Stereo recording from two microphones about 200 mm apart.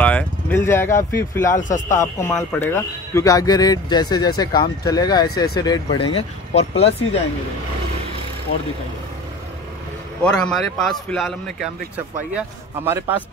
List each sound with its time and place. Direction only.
0.0 s speech: 5° left (ahead or behind)
1.5 s speech: 40° left (ahead or behind)
2.3 s speech: 10° left (ahead or behind); by 7.2 s 30° left (ahead or behind)
10.2 s a man's voice: 5° left (ahead or behind)
12.4 s a man's voice: 15° right (ahead or behind)